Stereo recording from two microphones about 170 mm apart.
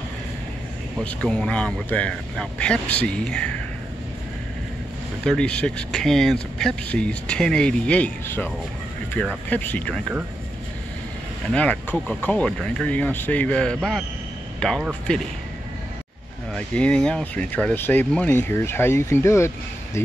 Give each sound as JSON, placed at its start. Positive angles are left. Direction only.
{"t": 1.0, "sound": "speech", "side_deg": 5}
{"t": 5.2, "sound": "speech", "side_deg": 5}
{"t": 11.5, "sound": "speech", "side_deg": 5}
{"t": 16.5, "sound": "speech", "side_deg": 5}